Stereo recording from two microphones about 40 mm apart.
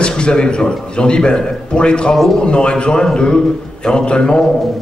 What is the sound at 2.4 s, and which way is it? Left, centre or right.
A man's voice, left.